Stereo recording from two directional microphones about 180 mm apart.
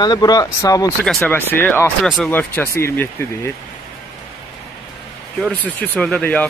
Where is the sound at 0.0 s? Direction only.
25° left (ahead or behind).